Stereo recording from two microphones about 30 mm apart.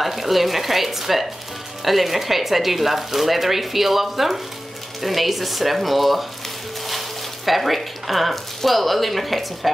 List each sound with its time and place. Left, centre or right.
0.0 s speech: centre